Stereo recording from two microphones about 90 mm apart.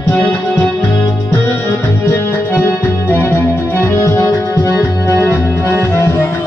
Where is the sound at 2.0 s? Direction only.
25° left (ahead or behind); by 4.8 s 40° left (ahead or behind).